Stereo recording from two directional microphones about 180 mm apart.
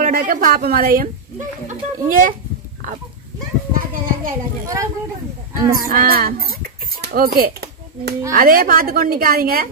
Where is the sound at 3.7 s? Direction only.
50° right (ahead or behind).